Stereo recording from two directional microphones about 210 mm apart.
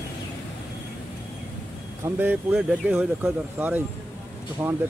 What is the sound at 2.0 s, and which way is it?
Speech, 10° right (ahead or behind).